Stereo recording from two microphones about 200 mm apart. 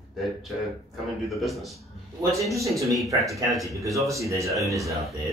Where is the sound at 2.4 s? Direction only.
15° right (ahead or behind).